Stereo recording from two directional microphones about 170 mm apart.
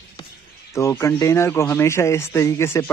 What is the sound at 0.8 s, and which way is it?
Speech, 15° left (ahead or behind).